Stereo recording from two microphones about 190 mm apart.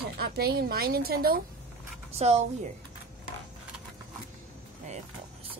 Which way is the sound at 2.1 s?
35° right (ahead or behind).